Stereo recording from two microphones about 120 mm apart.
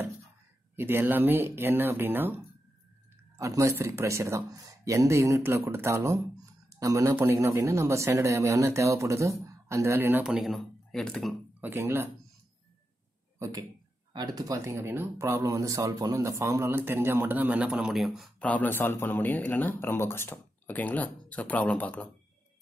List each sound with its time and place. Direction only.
0.7 s speech: 20° right (ahead or behind)
3.3 s speech: 25° right (ahead or behind)
10.2 s speech: 5° right (ahead or behind)
11.6 s speech: 20° right (ahead or behind)
13.4 s speech: 30° right (ahead or behind); by 18.3 s centre (ahead or behind)
18.4 s speech: 15° left (ahead or behind)